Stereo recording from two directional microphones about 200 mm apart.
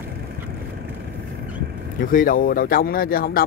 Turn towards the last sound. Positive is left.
turn(degrees=45)  # may be behind; listen again after turning